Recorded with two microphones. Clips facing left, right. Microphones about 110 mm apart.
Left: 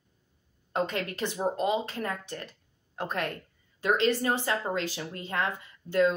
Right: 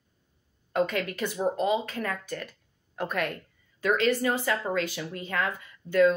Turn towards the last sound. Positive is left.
turn(degrees=25)  # may be behind; listen again after turning